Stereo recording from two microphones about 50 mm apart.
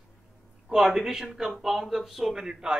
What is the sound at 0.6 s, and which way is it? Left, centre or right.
Speech, centre.